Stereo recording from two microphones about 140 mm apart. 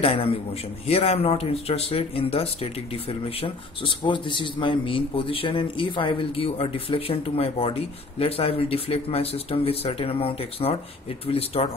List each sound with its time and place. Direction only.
0.0 s speech: 40° left (ahead or behind)